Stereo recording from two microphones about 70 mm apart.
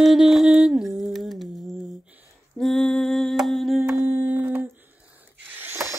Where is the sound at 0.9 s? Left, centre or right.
Centre.